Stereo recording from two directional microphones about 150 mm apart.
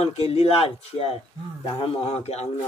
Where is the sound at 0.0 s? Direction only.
40° left (ahead or behind).